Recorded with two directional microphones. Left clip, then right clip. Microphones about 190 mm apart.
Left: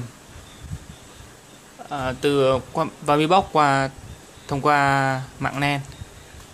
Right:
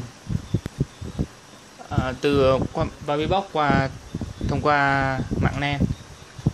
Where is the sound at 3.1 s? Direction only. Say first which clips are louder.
Left 6 dB; 20° left (ahead or behind).